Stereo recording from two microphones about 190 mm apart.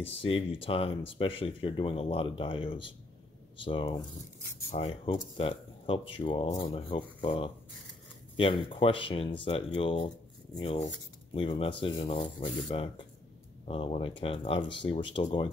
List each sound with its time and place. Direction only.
0.0 s speech: 30° left (ahead or behind)